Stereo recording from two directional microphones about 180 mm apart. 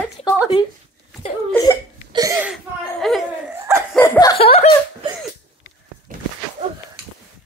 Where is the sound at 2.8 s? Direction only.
Centre (ahead or behind).